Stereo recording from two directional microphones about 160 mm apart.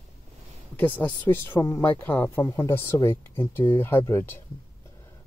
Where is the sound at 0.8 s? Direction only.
10° left (ahead or behind).